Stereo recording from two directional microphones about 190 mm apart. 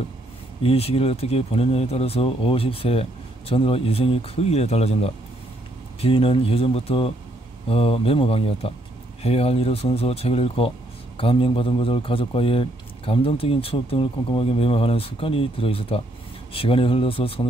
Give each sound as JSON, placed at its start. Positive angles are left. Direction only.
{"t": 0.6, "sound": "a man's voice", "side_deg": 30}